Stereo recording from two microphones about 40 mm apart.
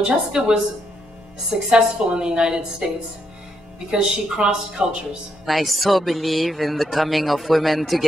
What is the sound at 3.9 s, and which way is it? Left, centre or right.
Speech, right.